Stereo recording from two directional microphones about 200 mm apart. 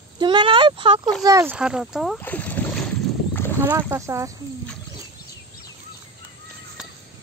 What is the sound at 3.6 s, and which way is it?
Speech, 10° right (ahead or behind).